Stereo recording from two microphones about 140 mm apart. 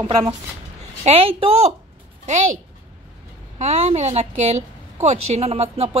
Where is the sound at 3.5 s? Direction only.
50° right (ahead or behind).